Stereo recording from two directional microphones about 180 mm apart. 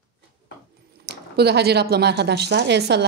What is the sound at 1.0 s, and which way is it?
Speech, 65° right (ahead or behind).